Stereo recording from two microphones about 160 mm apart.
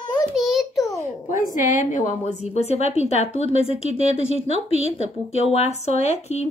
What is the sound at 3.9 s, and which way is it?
Speech, 45° right (ahead or behind).